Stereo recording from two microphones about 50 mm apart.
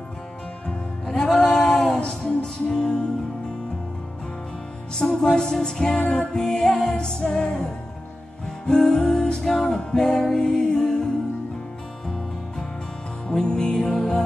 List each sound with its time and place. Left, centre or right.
1.0 s music: centre
4.9 s music: centre
13.3 s music: centre